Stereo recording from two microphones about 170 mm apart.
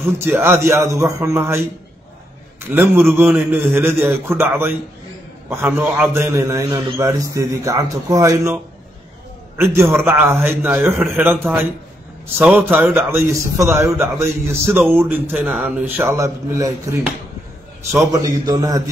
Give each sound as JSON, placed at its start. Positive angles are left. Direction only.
{"t": 0.2, "sound": "a man's voice", "side_deg": -15}
{"t": 2.7, "sound": "a man's voice", "side_deg": -10}
{"t": 9.6, "sound": "a man's voice", "side_deg": -15}
{"t": 12.4, "sound": "a man's voice", "side_deg": -10}
{"t": 17.9, "sound": "a man's voice", "side_deg": -20}